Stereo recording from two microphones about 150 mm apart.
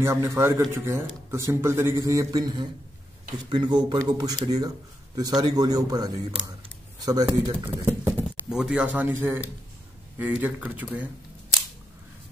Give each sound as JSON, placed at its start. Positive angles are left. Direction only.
{"t": 0.0, "sound": "a man's voice", "side_deg": -15}
{"t": 7.8, "sound": "a man's voice", "side_deg": -15}